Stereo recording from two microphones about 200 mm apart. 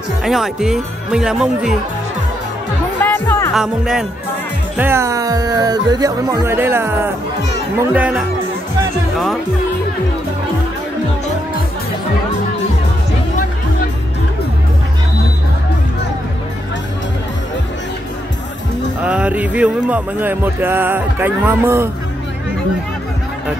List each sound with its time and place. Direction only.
0.2 s speech: centre (ahead or behind)
3.0 s music: 10° left (ahead or behind)
3.5 s speech: centre (ahead or behind)
19.0 s speech: 5° right (ahead or behind)